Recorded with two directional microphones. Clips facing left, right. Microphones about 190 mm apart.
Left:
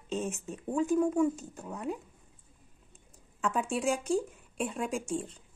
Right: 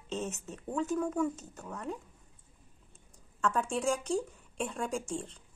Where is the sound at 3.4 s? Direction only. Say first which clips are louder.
Left 1 dB; 10° left (ahead or behind).